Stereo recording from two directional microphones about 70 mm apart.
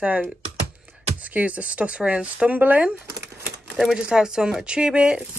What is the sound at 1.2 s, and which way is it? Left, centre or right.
Speech, centre.